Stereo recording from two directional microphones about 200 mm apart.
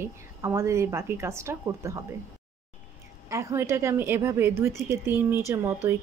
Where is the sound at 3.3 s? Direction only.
15° right (ahead or behind).